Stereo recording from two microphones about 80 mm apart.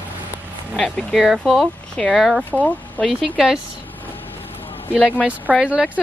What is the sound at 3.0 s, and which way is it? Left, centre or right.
Speech, centre.